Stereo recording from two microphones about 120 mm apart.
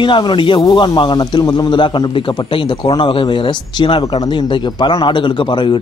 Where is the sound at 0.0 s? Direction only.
40° left (ahead or behind).